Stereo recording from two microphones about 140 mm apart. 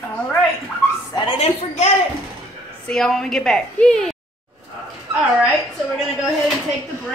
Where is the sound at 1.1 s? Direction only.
35° left (ahead or behind).